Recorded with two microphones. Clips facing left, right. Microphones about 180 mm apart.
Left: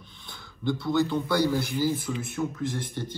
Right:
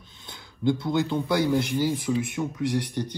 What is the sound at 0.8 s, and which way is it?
A man's voice, 20° right (ahead or behind).